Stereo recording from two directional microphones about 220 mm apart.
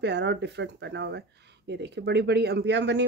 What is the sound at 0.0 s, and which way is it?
Speech, 50° right (ahead or behind).